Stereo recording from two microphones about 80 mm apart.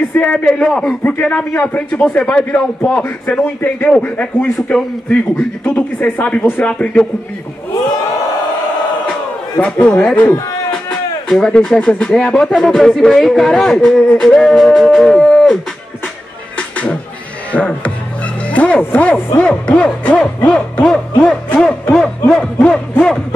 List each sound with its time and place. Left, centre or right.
0.1 s speech: centre
5.6 s speech: left
9.6 s speech: centre
16.5 s a sound: centre
17.5 s speech: centre